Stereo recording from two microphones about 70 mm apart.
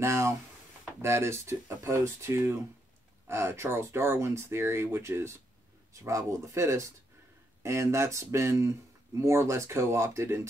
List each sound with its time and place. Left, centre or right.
0.0 s speech: right